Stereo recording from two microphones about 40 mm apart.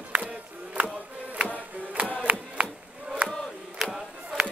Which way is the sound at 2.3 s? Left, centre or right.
Right.